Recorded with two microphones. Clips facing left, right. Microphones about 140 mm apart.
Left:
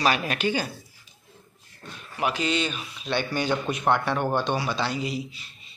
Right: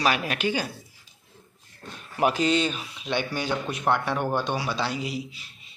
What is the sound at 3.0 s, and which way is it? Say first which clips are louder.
Speech: left 1 dB; 15° right (ahead or behind).